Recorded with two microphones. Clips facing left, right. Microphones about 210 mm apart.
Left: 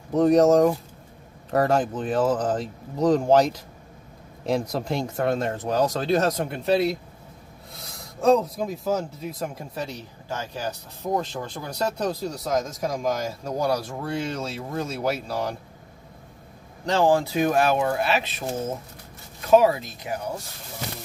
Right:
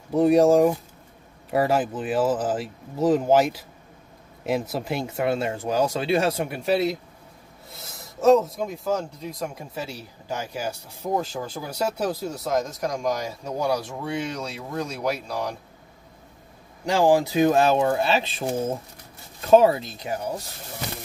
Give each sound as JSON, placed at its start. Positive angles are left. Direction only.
{"t": 0.1, "sound": "speech", "side_deg": -10}
{"t": 16.8, "sound": "speech", "side_deg": -10}
{"t": 19.5, "sound": "speech", "side_deg": -30}